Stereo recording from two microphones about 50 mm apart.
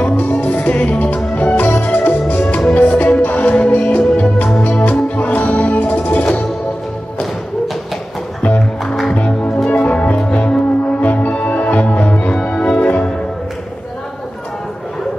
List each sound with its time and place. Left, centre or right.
0.0 s music: left
8.5 s music: centre
9.1 s music: left
12.4 s organ: left